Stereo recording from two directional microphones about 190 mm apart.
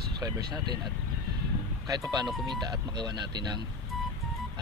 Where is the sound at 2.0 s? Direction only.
20° right (ahead or behind).